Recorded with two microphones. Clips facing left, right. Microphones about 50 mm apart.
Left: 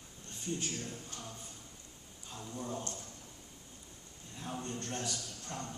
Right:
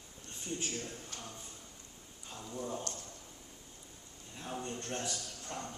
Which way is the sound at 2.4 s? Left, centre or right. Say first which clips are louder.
Right 1 dB; centre.